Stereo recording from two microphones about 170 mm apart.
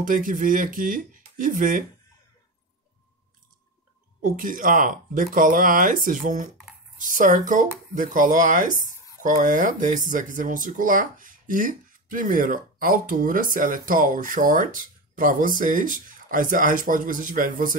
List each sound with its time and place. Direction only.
0.0 s speech: 50° right (ahead or behind)
4.2 s speech: 55° right (ahead or behind)